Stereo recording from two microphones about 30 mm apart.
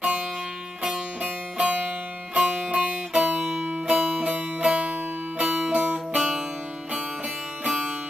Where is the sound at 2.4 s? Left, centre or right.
Centre.